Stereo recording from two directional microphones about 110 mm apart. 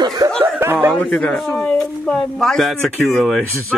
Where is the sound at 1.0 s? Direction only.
5° left (ahead or behind).